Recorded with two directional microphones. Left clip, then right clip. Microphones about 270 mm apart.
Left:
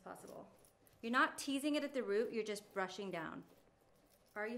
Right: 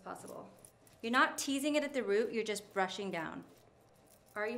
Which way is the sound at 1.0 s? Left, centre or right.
Centre.